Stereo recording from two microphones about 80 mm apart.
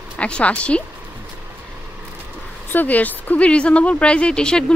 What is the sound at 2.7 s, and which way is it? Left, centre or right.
Speech, left.